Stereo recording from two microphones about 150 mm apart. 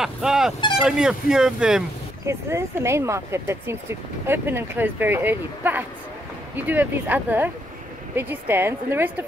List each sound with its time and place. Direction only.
0.0 s speech: 5° right (ahead or behind)
2.2 s speech: 20° right (ahead or behind)